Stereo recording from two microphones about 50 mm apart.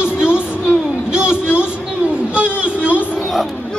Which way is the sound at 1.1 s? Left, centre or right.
Centre.